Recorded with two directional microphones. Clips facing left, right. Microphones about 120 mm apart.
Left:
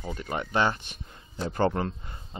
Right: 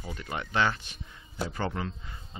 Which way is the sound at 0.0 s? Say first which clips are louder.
Left 4 dB; 30° left (ahead or behind).